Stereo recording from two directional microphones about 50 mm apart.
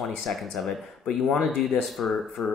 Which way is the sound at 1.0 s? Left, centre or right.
Centre.